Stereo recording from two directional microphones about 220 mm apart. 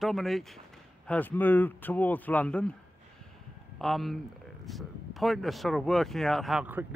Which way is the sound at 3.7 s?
Centre (ahead or behind).